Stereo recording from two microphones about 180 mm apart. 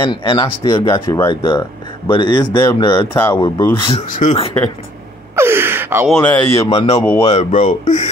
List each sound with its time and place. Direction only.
0.0 s speech: 25° left (ahead or behind)
4.1 s speech: 45° left (ahead or behind)
5.3 s gasp: 15° right (ahead or behind)
6.0 s speech: 5° left (ahead or behind)
6.7 s speech: 30° left (ahead or behind)